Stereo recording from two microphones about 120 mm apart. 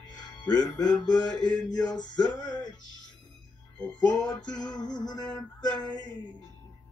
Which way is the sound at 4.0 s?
35° left (ahead or behind).